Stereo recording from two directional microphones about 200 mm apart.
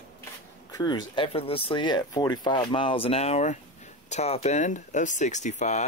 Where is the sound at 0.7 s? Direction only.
20° left (ahead or behind).